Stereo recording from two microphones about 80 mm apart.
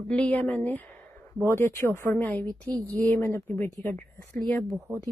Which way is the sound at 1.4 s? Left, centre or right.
Left.